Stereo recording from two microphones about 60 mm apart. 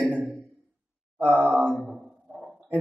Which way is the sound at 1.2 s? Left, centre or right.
Right.